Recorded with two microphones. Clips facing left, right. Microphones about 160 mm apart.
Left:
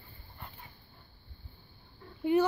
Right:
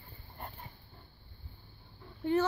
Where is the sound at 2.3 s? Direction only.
15° left (ahead or behind).